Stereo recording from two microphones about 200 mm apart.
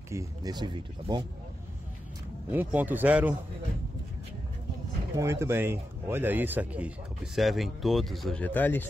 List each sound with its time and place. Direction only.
0.1 s speech: 15° right (ahead or behind)
2.5 s speech: 10° right (ahead or behind)
5.1 s speech: 15° right (ahead or behind); by 8.8 s 10° left (ahead or behind)